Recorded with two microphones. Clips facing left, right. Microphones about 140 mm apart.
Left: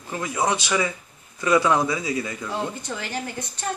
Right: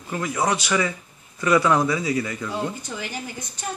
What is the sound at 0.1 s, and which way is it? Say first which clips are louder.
A man's voice: right 1 dB; 15° left (ahead or behind).